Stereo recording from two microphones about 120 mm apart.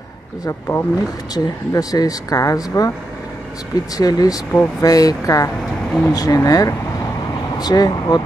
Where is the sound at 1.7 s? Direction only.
30° left (ahead or behind).